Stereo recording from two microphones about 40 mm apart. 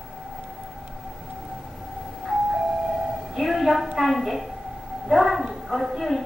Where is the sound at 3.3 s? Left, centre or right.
Centre.